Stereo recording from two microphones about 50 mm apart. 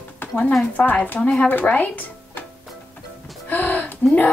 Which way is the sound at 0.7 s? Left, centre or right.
Left.